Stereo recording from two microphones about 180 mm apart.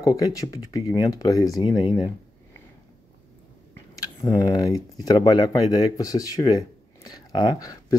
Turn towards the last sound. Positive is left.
turn(degrees=20)  # may be behind; listen again after turning